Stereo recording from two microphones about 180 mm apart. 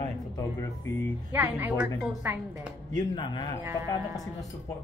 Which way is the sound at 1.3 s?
10° right (ahead or behind).